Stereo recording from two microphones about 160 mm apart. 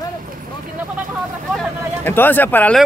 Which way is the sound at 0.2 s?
60° right (ahead or behind).